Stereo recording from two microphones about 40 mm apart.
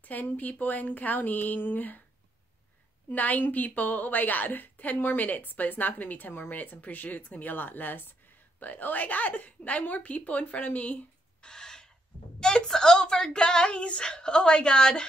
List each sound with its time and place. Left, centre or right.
0.0 s a woman's voice: left
3.1 s a woman's voice: left
11.4 s owl: centre
12.4 s speech: centre